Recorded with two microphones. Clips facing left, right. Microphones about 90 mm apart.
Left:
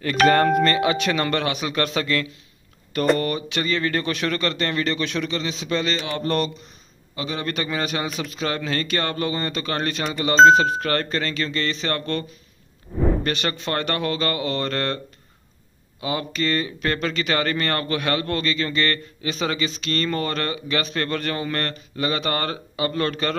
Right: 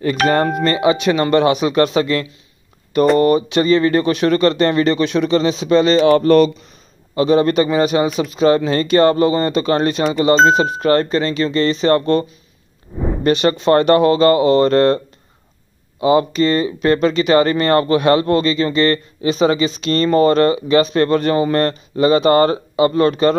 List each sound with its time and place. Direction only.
0.0 s speech: 20° right (ahead or behind)
5.3 s speech: 30° right (ahead or behind)
5.9 s speech: 50° right (ahead or behind)
7.2 s speech: 35° right (ahead or behind)
16.0 s speech: 25° right (ahead or behind)